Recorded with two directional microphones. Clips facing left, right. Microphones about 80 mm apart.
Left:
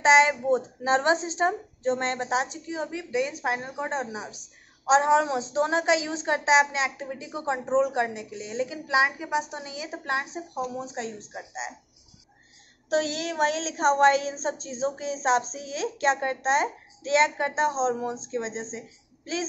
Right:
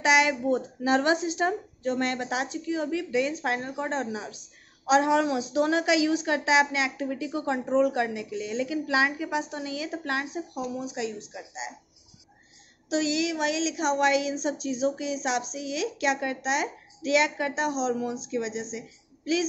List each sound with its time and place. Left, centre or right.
0.0 s a woman's voice: left
12.9 s a woman's voice: left